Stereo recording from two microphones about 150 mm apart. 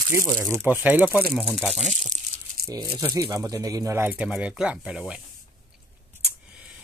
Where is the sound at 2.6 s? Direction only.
25° right (ahead or behind); by 5.2 s 5° right (ahead or behind).